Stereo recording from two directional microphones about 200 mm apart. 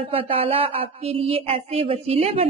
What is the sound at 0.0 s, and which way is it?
A woman's voice, 25° right (ahead or behind).